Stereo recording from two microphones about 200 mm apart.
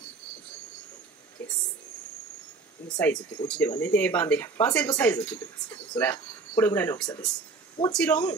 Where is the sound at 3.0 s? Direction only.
5° left (ahead or behind).